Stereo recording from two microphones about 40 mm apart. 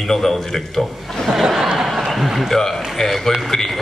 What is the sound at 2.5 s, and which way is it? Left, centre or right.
A man's voice, centre.